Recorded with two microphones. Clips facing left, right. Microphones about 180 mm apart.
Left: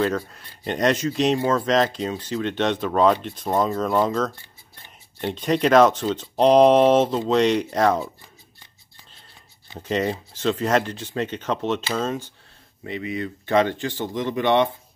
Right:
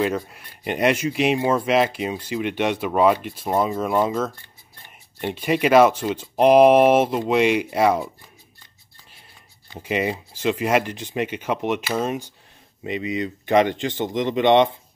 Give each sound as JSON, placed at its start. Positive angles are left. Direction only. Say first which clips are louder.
{"t": 0.0, "sound": "speech", "louder": "even", "side_deg": -10}
{"t": 9.8, "sound": "speech", "louder": "even", "side_deg": -10}